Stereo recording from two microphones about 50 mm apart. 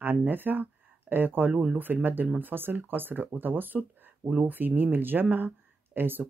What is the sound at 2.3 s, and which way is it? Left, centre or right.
Speech, right.